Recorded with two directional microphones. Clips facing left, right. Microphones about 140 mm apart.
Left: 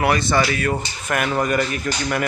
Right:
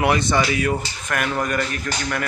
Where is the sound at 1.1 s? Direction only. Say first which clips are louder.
Left 3 dB; 5° left (ahead or behind).